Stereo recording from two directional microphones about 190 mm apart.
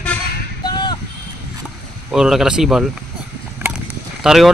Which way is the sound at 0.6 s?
20° left (ahead or behind).